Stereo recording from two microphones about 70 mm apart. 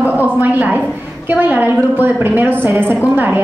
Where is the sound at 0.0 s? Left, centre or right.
Right.